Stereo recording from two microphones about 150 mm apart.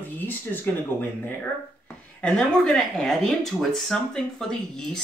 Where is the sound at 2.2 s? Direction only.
5° left (ahead or behind).